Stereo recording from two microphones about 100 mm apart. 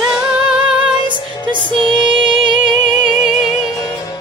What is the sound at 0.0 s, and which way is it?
Music, 5° right (ahead or behind).